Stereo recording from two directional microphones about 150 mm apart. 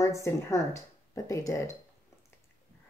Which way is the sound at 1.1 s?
20° left (ahead or behind).